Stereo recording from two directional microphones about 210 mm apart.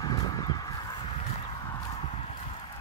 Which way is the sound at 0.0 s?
20° left (ahead or behind).